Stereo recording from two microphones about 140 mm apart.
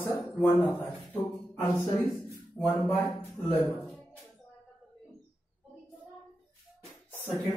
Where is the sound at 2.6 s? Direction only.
Centre (ahead or behind).